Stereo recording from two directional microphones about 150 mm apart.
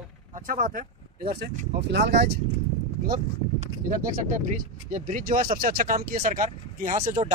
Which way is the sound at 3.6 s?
60° right (ahead or behind).